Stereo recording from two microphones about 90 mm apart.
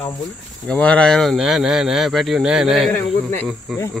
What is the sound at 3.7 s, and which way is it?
Speech, centre (ahead or behind).